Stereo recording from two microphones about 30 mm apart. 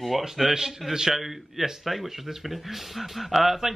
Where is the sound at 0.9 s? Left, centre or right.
Centre.